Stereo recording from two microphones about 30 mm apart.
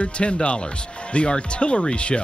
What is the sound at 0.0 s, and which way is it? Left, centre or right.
Speech, left.